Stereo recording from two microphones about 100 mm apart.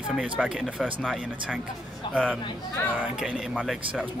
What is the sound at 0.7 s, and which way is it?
Speech, 10° right (ahead or behind).